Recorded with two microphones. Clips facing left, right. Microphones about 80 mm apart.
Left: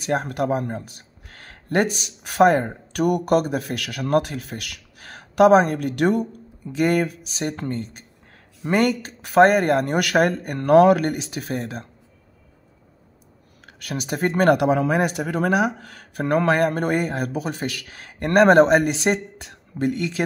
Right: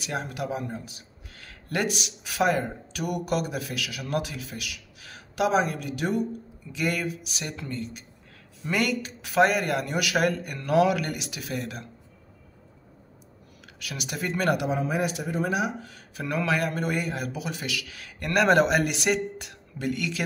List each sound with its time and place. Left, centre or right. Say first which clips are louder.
0.0 s speech: left 8 dB; left
13.7 s speech: left 8 dB; left
14.7 s speech: left 7 dB; left
15.2 s speech: left 6 dB; left